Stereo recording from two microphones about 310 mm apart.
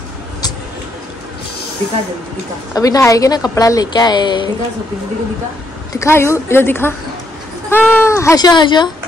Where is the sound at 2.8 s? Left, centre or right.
Centre.